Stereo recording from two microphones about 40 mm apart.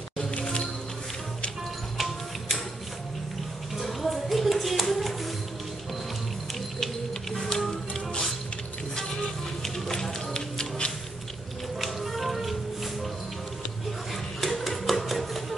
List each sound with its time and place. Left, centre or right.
0.3 s music: left
2.0 s music: centre
3.7 s clapping: centre
6.8 s printer: centre
7.9 s music: centre
9.6 s music: centre
11.8 s music: centre
14.4 s a sound: centre